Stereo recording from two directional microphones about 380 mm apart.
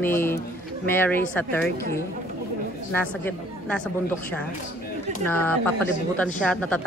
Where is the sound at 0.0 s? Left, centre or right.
Centre.